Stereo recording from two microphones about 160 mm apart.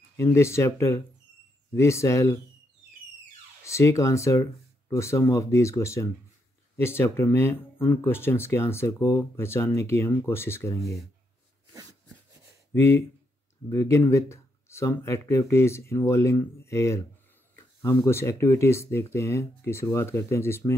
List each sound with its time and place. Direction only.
0.2 s speech: 15° left (ahead or behind)
3.6 s speech: 20° left (ahead or behind)
12.7 s speech: 15° left (ahead or behind)